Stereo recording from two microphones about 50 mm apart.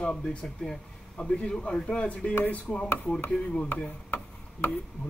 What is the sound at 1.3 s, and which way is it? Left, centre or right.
Speech, left.